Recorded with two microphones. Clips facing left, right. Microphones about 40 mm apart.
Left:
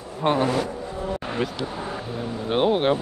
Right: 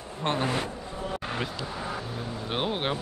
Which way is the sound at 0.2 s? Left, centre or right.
Centre.